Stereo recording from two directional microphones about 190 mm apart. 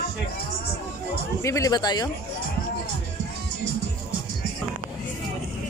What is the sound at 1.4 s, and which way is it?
Speech, 15° left (ahead or behind).